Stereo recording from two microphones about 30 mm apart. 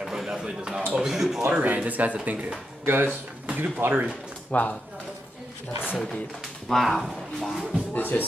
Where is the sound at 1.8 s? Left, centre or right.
Right.